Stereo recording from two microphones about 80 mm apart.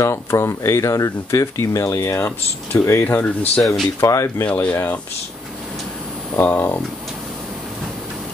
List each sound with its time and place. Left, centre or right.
0.0 s speech: left
3.1 s speech: left
4.0 s speech: left
4.6 s speech: left
6.3 s speech: left